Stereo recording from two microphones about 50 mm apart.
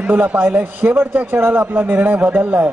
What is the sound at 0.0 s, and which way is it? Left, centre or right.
A man's voice, right.